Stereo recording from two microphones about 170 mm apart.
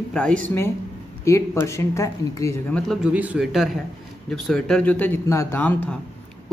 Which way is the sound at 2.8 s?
Centre (ahead or behind).